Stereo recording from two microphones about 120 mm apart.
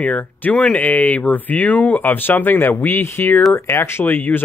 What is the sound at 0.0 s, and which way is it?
Speech, 15° left (ahead or behind).